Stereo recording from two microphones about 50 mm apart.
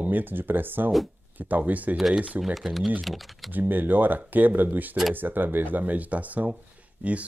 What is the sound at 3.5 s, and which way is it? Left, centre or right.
Speech, right.